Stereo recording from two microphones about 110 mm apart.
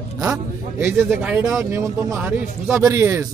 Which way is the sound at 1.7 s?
30° right (ahead or behind).